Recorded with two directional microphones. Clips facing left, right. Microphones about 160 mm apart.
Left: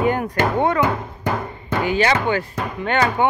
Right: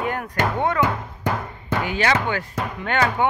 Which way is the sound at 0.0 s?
Centre (ahead or behind).